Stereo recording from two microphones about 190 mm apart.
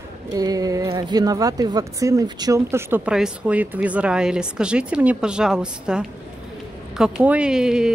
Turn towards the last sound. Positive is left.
turn(degrees=-5)  # may be behind; listen again after turning